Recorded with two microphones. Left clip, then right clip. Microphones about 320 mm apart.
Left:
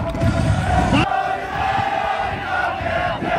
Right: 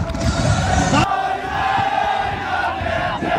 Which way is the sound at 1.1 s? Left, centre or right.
Centre.